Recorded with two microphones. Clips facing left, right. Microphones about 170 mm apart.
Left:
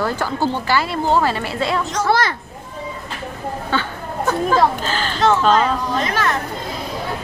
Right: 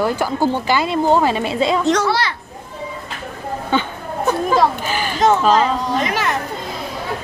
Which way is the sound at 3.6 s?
15° right (ahead or behind).